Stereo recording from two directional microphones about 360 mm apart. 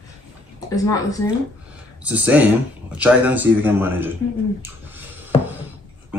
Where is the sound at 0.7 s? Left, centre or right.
Centre.